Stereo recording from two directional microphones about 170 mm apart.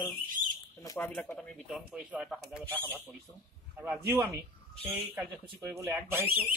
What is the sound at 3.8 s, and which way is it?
Speech, 10° right (ahead or behind).